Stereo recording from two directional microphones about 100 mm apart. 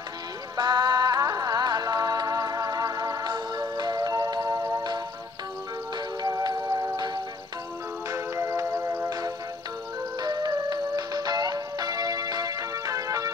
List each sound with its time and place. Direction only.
0.6 s music: 45° right (ahead or behind)
6.2 s music: 40° right (ahead or behind)
8.1 s music: 30° right (ahead or behind)
10.2 s music: 40° right (ahead or behind)